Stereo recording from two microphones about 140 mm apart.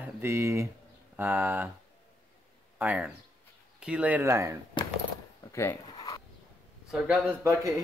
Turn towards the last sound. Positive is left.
turn(degrees=-20)  # may be behind; listen again after turning